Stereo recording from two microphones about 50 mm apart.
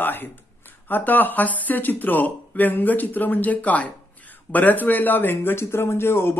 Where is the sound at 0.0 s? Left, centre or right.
Left.